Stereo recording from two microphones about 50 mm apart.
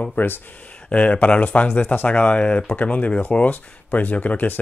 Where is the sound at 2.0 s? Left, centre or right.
Left.